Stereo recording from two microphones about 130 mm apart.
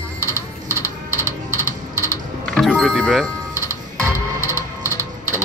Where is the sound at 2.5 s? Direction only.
5° left (ahead or behind).